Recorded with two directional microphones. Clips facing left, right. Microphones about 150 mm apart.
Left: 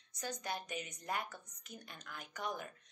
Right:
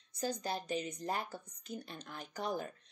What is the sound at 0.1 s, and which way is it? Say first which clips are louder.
A woman's voice: right 5 dB; 30° right (ahead or behind).